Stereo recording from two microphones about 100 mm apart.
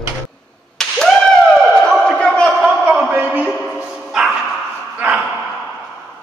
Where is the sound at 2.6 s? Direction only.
15° right (ahead or behind).